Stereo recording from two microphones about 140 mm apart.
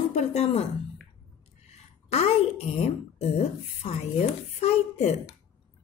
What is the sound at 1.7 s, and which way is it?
A woman's voice, 50° left (ahead or behind).